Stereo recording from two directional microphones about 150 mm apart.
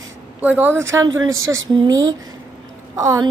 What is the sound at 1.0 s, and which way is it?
A woman's voice, 25° right (ahead or behind).